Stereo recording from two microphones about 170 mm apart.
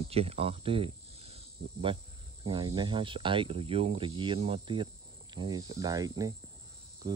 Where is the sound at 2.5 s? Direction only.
25° right (ahead or behind).